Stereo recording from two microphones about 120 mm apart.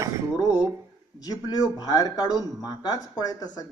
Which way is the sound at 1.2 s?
30° left (ahead or behind).